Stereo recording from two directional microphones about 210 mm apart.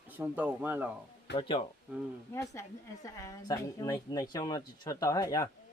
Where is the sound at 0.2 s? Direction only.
5° right (ahead or behind).